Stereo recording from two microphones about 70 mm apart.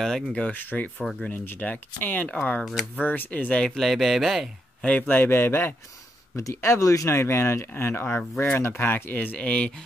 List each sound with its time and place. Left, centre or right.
0.0 s speech: centre
0.5 s speech: left; by 4.5 s centre
4.8 s speech: left
6.3 s speech: left; by 9.7 s centre